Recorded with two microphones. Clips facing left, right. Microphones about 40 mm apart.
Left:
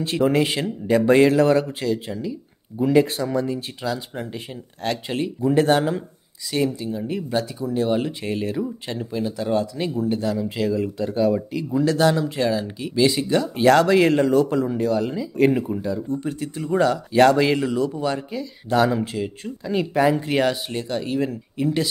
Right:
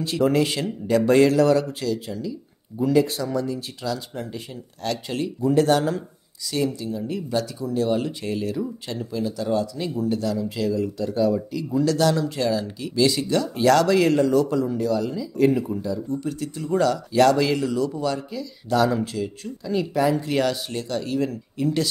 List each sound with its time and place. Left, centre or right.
0.2 s speech: left